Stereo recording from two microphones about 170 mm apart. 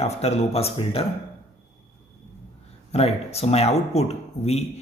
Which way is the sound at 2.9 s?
35° left (ahead or behind).